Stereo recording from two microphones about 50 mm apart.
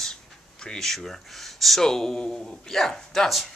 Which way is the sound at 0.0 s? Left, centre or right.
Centre.